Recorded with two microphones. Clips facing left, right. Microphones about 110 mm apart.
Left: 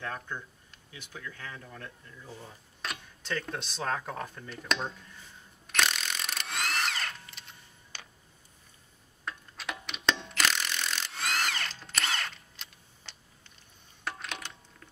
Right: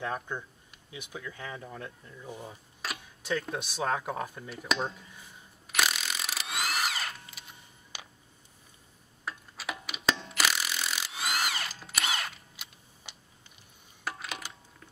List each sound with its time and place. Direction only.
0.0 s speech: 15° right (ahead or behind)
5.7 s mechanisms: 5° right (ahead or behind)
9.2 s mechanisms: 5° right (ahead or behind)
14.0 s a sound: 5° right (ahead or behind)